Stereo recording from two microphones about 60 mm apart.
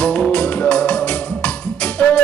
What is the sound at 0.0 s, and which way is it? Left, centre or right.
Music, centre.